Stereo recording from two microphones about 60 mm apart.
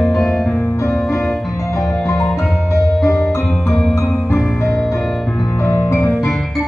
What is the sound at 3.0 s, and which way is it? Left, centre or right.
Music, centre.